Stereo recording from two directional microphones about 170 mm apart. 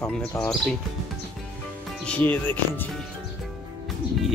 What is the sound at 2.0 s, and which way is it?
Speech, 5° left (ahead or behind).